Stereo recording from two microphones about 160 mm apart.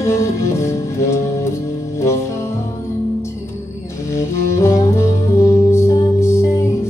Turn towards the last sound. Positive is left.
turn(degrees=15)  # may be behind; listen again after turning